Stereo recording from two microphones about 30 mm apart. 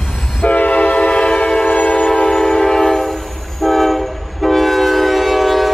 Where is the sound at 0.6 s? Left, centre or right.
Left.